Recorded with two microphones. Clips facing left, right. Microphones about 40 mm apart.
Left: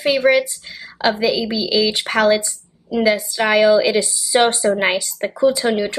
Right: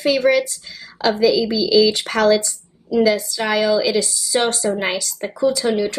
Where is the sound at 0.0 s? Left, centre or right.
Left.